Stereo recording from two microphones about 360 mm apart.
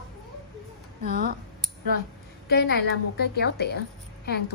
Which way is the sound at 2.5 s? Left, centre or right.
Left.